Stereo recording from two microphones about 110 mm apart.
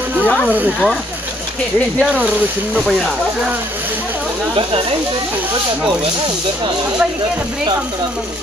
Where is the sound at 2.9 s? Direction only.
Centre (ahead or behind).